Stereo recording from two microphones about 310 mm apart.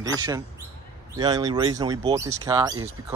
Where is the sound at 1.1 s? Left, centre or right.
Centre.